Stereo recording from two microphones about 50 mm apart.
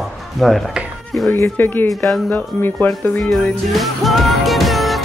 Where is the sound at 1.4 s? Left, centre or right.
Left.